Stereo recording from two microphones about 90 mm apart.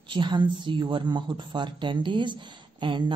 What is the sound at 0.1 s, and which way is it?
A woman's voice, 60° right (ahead or behind).